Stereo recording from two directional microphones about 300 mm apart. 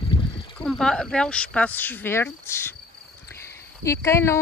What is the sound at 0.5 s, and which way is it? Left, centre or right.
Speech, centre.